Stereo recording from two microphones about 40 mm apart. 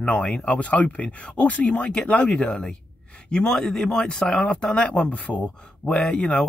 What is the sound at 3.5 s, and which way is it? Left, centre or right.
Speech, centre.